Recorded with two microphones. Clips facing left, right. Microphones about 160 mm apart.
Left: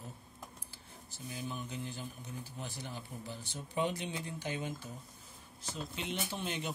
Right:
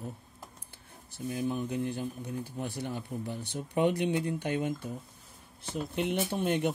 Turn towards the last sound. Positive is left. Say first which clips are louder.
# right 10 dB
turn(degrees=-55)  # may be behind; listen again after turning